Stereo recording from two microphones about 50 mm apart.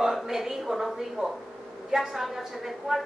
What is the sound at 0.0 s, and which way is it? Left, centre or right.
A woman's voice, centre.